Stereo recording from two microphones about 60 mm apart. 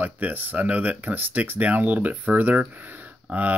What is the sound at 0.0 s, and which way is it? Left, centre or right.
Speech, right.